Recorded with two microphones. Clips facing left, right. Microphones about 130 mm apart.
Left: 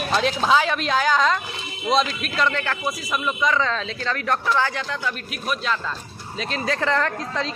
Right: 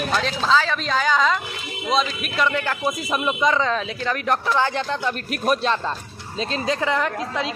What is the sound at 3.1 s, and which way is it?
Speech, 25° right (ahead or behind).